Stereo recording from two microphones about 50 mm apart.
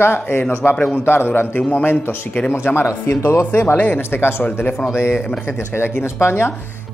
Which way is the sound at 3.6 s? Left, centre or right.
Left.